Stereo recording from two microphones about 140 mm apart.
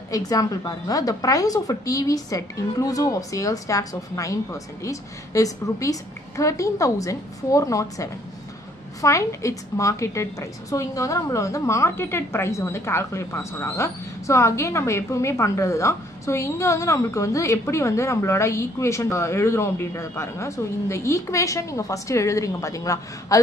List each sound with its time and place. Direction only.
0.1 s a woman's voice: 25° left (ahead or behind)